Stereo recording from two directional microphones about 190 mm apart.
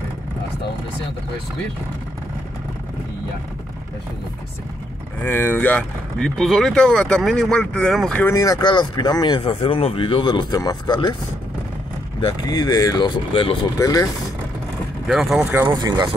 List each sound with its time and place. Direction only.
5.2 s speech: 10° left (ahead or behind)
8.3 s speech: 15° left (ahead or behind)
12.2 s speech: 25° left (ahead or behind)
15.0 s speech: centre (ahead or behind)
15.6 s speech: 20° right (ahead or behind)